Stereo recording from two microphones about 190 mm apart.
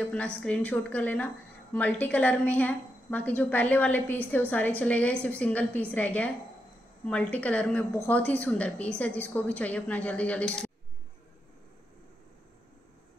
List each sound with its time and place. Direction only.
0.1 s a woman's voice: 5° left (ahead or behind)